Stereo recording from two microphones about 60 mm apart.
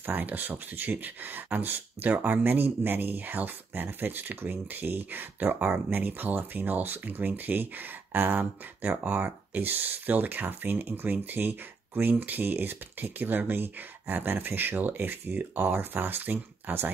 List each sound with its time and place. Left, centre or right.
0.0 s speech: right